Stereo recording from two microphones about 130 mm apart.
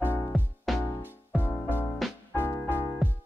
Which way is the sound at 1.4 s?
15° left (ahead or behind).